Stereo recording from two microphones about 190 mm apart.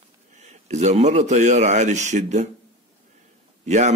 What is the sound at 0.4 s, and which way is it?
Speech, 35° right (ahead or behind).